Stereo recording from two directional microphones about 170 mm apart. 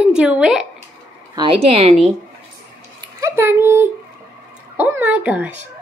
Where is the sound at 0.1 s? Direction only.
5° right (ahead or behind).